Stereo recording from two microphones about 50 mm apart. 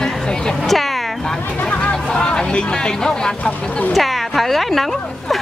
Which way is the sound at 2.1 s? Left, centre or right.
Centre.